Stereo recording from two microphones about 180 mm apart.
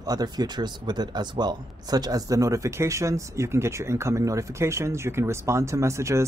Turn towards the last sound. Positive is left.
turn(degrees=-15)  # may be behind; listen again after turning